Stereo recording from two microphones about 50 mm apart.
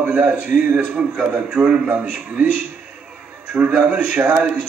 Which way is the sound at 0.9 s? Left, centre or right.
Right.